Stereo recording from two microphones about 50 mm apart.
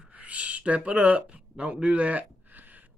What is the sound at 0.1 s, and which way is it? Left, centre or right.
Speech, right.